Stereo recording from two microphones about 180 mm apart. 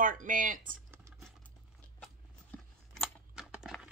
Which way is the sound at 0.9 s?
15° right (ahead or behind).